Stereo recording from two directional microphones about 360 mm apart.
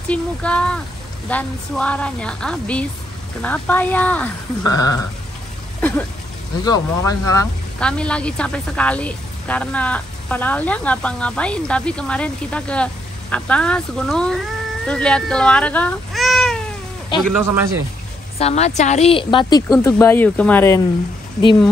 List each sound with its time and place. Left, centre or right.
0.1 s speech: centre
5.8 s a sound: centre
6.6 s speech: centre
18.4 s a woman's voice: centre